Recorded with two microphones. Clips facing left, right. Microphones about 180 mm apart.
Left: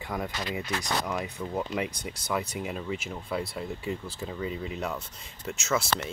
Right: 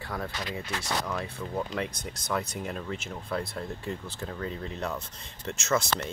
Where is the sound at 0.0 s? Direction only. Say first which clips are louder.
Left 2 dB; 20° left (ahead or behind).